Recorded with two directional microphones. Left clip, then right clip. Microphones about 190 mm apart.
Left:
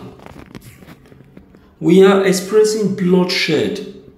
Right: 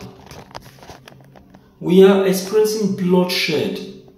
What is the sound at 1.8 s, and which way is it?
A man's voice, 25° left (ahead or behind).